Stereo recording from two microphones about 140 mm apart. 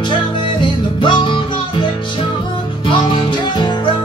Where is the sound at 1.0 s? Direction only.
35° left (ahead or behind).